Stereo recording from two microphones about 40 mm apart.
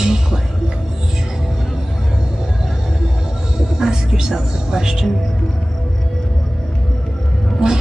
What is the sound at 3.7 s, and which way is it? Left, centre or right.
Speech, centre.